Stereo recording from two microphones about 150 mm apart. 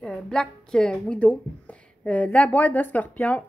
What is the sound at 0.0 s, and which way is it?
A woman's voice, 5° left (ahead or behind).